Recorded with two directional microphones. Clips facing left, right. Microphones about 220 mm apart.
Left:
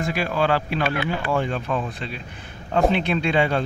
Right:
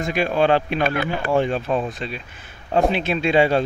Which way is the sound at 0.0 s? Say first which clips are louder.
Right 3 dB; 20° right (ahead or behind).